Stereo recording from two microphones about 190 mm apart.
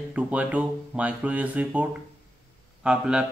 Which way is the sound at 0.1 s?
5° right (ahead or behind).